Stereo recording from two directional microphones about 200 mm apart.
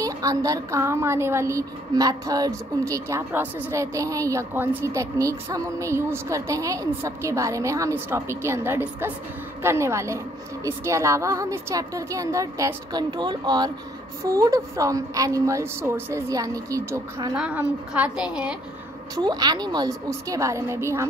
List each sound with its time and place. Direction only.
0.0 s a woman's voice: 15° right (ahead or behind)
19.1 s a woman's voice: 20° right (ahead or behind)